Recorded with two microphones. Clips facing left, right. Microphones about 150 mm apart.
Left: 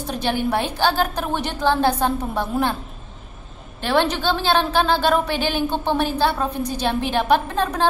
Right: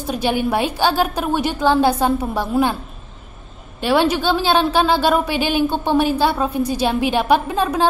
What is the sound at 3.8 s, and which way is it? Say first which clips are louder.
A woman's voice: right 3 dB; 10° right (ahead or behind).